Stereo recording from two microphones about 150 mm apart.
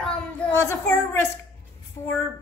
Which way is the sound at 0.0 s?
5° left (ahead or behind).